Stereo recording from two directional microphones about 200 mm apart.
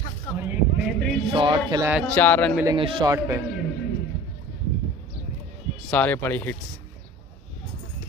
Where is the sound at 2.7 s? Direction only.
20° right (ahead or behind).